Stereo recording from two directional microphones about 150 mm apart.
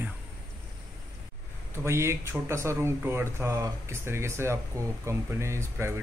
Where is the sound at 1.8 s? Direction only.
20° right (ahead or behind).